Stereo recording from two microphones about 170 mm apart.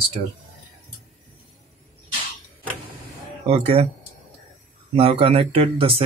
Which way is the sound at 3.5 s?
35° right (ahead or behind).